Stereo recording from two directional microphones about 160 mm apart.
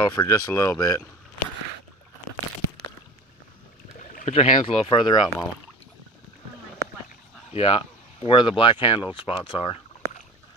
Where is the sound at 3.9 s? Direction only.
45° left (ahead or behind).